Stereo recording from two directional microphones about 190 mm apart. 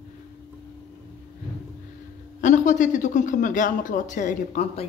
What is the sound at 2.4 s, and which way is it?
Speech, 40° left (ahead or behind).